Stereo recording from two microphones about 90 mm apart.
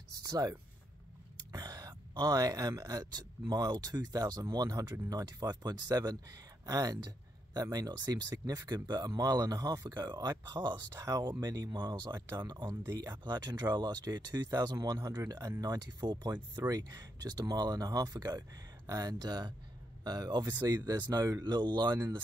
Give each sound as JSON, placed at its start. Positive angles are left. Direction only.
{"t": 0.2, "sound": "speech", "side_deg": -40}
{"t": 11.0, "sound": "speech", "side_deg": -40}
{"t": 12.9, "sound": "speech", "side_deg": -40}
{"t": 13.2, "sound": "speech", "side_deg": -55}